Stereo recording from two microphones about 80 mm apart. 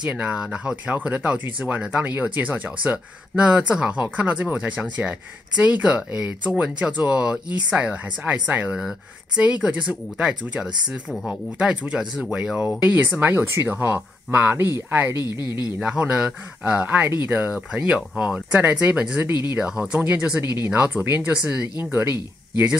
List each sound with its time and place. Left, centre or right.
0.0 s speech: centre; by 15.6 s right
15.8 s speech: centre